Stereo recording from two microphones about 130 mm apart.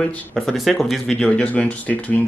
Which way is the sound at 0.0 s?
5° left (ahead or behind).